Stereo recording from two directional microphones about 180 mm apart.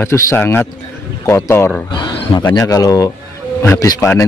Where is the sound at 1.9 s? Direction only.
25° left (ahead or behind).